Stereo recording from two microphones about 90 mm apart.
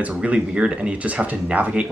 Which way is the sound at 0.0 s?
15° right (ahead or behind).